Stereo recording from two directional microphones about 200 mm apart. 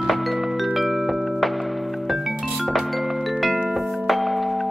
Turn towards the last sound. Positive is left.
turn(degrees=0)  # may be behind; listen again after turning